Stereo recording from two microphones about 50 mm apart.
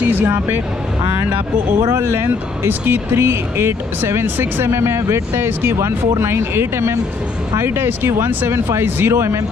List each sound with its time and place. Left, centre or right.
0.0 s music: right
2.0 s speech: right
8.5 s speech: right